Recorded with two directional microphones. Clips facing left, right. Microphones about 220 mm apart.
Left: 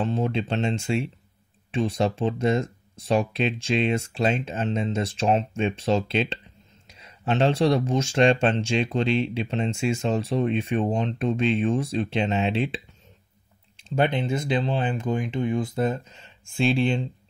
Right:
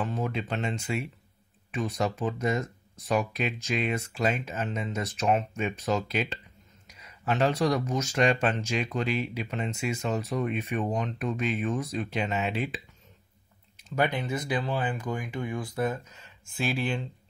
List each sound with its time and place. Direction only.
0.0 s speech: 30° left (ahead or behind)